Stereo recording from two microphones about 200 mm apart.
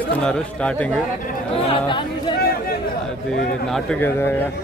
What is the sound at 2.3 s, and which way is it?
Chatter, 50° left (ahead or behind).